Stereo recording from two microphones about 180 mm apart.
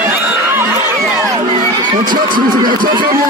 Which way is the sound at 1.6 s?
45° right (ahead or behind).